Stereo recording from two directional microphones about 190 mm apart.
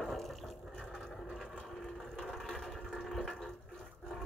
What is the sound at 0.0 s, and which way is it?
Water, centre (ahead or behind).